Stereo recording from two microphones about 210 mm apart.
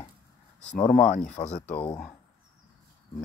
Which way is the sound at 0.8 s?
35° left (ahead or behind).